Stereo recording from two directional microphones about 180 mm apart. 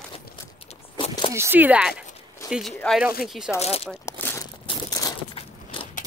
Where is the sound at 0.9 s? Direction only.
30° left (ahead or behind).